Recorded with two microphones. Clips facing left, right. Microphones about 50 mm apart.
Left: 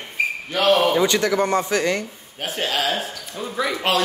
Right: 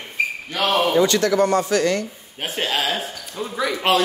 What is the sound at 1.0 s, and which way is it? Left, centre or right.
Speech, centre.